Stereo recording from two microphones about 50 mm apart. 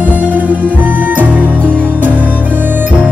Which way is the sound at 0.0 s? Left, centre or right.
Right.